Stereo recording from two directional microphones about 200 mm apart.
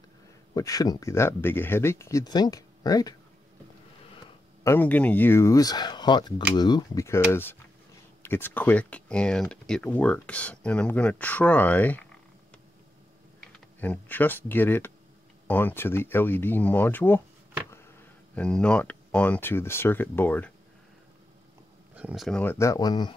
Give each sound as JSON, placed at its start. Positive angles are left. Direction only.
{"t": 0.6, "sound": "speech", "side_deg": 20}
{"t": 4.6, "sound": "speech", "side_deg": 10}
{"t": 13.4, "sound": "speech", "side_deg": 5}
{"t": 18.3, "sound": "speech", "side_deg": 5}
{"t": 21.9, "sound": "speech", "side_deg": -5}